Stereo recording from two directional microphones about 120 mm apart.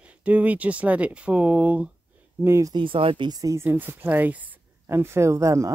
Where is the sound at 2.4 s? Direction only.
25° right (ahead or behind).